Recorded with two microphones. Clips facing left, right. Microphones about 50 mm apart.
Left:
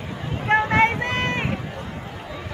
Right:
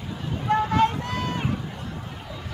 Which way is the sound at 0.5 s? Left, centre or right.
Left.